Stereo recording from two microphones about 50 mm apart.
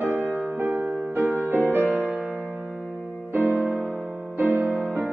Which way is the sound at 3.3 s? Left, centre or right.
Right.